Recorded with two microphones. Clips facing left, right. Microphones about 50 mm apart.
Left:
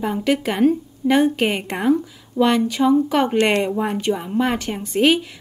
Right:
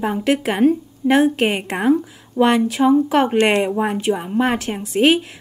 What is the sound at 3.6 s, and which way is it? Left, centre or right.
A woman's voice, centre.